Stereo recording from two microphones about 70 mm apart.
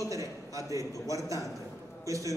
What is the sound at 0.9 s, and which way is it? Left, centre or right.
Speech, left.